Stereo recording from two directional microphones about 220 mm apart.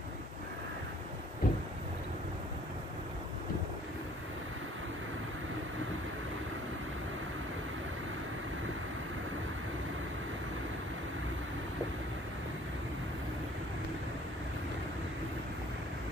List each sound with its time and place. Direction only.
1.4 s vehicle: 40° left (ahead or behind)